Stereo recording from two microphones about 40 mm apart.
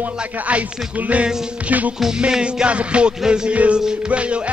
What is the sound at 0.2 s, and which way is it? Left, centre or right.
Music, right.